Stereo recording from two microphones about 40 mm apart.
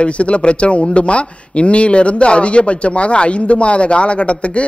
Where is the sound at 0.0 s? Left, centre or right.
Left.